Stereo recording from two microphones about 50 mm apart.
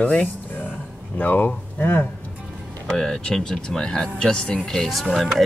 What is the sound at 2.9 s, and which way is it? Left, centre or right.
Speech, centre.